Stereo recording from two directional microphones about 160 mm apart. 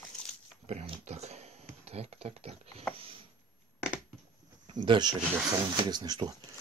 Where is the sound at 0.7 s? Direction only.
40° right (ahead or behind).